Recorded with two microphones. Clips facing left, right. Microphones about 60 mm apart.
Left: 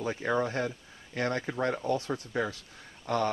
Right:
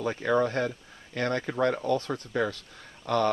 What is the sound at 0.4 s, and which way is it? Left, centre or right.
Speech, right.